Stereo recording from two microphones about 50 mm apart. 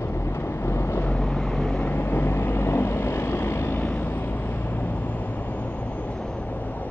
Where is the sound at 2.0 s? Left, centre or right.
Left.